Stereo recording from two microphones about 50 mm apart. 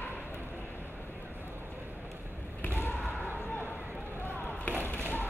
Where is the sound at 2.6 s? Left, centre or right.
Left.